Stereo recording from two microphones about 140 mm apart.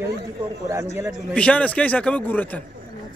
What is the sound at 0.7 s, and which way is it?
Speech, 20° right (ahead or behind).